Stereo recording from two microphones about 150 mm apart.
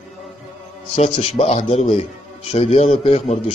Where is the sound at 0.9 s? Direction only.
45° left (ahead or behind).